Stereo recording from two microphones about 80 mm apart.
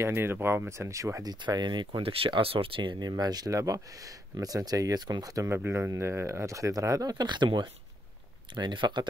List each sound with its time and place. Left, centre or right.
0.0 s speech: right
1.2 s speech: right
3.1 s speech: right
5.7 s speech: right
8.5 s speech: right